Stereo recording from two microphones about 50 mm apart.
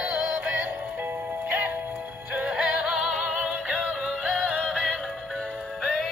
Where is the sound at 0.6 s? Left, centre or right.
Right.